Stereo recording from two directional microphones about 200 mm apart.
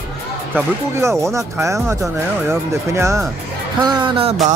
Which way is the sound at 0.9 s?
15° right (ahead or behind).